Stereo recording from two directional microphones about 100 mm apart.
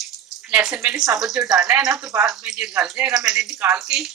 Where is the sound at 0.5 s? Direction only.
10° right (ahead or behind).